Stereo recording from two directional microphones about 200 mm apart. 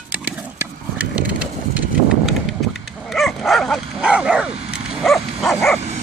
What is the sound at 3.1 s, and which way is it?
Dog, centre (ahead or behind).